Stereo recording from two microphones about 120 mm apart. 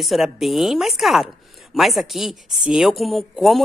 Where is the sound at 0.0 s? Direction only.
Centre (ahead or behind).